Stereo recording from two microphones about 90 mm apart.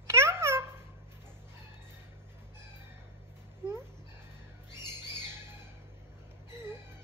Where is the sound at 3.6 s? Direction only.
30° right (ahead or behind).